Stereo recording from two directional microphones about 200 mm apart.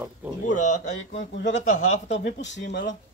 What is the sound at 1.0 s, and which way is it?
Speech, 65° left (ahead or behind).